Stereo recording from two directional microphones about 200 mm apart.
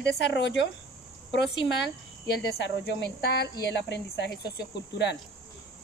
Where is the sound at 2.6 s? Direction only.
60° left (ahead or behind).